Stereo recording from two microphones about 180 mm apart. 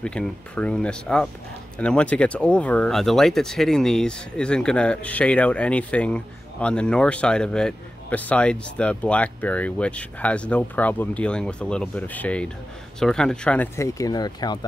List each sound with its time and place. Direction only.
0.0 s speech: 5° left (ahead or behind)
13.7 s speech: 20° left (ahead or behind)